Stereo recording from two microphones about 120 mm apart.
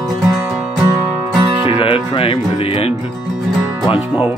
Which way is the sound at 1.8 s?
50° left (ahead or behind).